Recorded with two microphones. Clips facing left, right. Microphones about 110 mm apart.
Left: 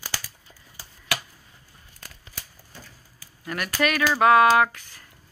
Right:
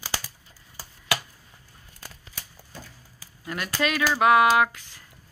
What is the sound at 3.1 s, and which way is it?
Speech, 20° right (ahead or behind).